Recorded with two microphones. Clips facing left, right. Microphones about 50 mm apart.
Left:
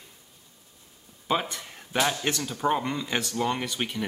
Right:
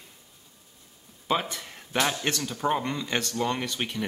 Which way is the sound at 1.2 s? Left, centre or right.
Centre.